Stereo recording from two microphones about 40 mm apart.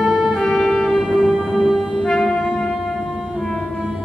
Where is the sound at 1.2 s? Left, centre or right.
Centre.